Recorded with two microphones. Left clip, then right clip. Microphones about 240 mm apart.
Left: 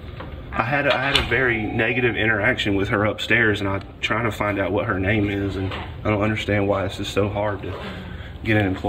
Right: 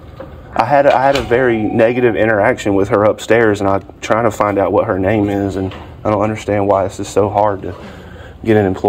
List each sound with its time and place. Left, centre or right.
0.6 s speech: centre
1.3 s speech: right